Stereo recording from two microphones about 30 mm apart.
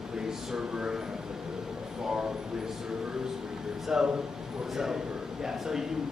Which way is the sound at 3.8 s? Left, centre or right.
Centre.